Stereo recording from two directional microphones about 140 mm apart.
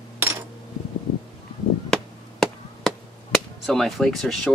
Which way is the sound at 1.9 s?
5° left (ahead or behind).